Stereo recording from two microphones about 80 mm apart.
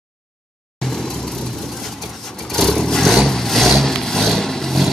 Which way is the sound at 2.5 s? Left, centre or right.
Centre.